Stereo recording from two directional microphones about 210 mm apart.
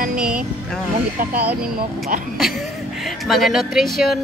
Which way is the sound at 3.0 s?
Centre (ahead or behind).